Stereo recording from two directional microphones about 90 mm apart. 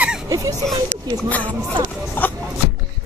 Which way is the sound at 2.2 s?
20° left (ahead or behind).